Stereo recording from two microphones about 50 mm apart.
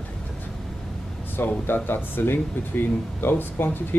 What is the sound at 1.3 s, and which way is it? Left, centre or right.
Speech, left.